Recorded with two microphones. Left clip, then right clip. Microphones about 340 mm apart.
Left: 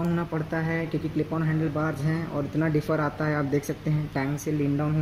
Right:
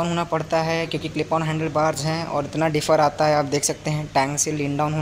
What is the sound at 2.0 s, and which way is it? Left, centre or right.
Speech, right.